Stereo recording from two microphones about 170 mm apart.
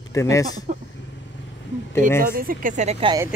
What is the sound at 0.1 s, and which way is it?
Speech, 20° left (ahead or behind).